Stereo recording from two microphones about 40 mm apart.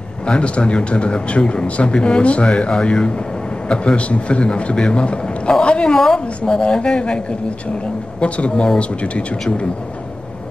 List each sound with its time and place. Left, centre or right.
0.3 s a man's voice: left
5.9 s a woman's voice: centre
6.4 s speech: left